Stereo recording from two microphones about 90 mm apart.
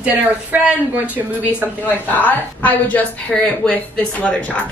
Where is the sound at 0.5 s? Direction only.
15° right (ahead or behind).